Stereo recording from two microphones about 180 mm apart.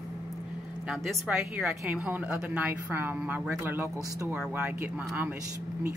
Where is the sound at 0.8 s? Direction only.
Centre (ahead or behind).